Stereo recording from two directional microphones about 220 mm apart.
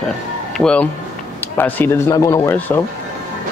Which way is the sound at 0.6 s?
5° left (ahead or behind).